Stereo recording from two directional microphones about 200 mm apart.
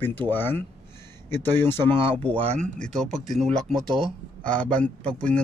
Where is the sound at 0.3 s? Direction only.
10° left (ahead or behind).